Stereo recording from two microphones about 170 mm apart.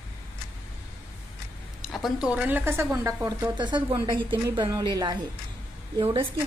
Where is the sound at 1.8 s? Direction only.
Centre (ahead or behind).